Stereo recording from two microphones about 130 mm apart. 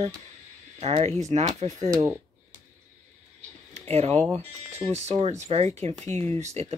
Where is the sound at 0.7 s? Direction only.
55° right (ahead or behind).